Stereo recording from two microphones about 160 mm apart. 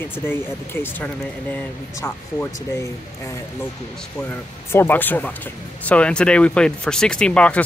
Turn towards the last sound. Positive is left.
turn(degrees=10)  # may be behind; listen again after turning